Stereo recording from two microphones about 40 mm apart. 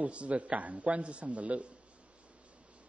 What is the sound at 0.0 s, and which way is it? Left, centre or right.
Speech, right.